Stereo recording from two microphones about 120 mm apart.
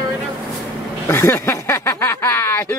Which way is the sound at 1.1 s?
20° left (ahead or behind).